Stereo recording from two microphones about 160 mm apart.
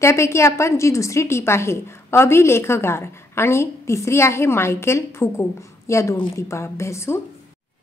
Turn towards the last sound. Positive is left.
turn(degrees=15)  # may be behind; listen again after turning